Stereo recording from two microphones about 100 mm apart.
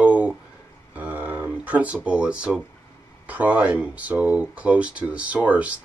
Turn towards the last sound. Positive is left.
turn(degrees=-15)  # may be behind; listen again after turning